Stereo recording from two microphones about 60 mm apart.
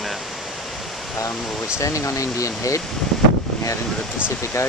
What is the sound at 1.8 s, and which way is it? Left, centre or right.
Speech, left.